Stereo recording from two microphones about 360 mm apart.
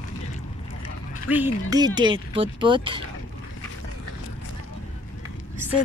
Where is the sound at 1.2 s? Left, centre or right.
Centre.